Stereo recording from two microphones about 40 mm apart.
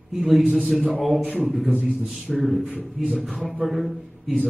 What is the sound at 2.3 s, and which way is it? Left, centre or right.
Speech, centre.